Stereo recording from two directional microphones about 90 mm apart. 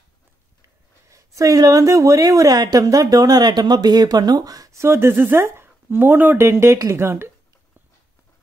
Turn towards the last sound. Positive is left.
turn(degrees=-30)  # may be behind; listen again after turning